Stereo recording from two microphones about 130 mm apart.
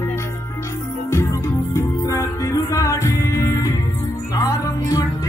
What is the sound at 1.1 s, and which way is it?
Music, 25° left (ahead or behind).